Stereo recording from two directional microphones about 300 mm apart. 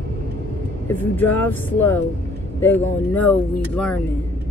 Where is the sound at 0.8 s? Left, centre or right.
Centre.